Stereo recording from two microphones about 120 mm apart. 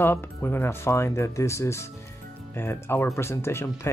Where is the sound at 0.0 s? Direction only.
15° left (ahead or behind).